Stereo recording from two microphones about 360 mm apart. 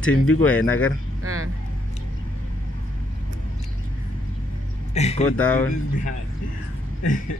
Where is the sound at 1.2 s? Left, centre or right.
Right.